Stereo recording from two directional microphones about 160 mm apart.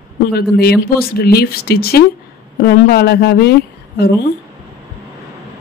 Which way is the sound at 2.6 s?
90° left.